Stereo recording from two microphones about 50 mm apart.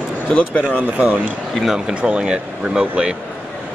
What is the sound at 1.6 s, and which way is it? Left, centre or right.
Speech, centre.